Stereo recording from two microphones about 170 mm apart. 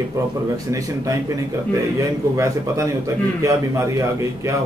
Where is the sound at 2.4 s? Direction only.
20° right (ahead or behind).